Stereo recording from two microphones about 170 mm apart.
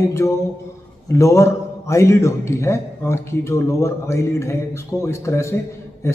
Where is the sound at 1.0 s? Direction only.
15° left (ahead or behind).